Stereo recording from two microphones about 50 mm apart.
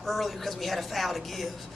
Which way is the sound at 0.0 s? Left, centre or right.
Centre.